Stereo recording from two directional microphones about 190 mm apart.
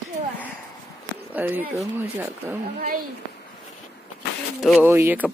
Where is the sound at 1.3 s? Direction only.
10° right (ahead or behind).